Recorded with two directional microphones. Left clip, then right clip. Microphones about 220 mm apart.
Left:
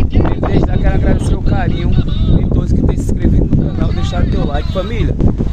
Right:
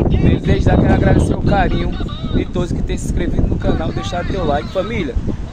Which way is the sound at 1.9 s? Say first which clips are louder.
Left 5 dB; 55° left (ahead or behind).